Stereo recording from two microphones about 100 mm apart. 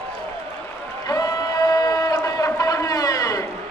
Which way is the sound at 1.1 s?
35° left (ahead or behind).